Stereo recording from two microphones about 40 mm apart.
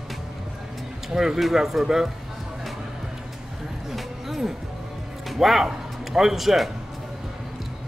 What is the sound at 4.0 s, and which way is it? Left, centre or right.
Music, centre.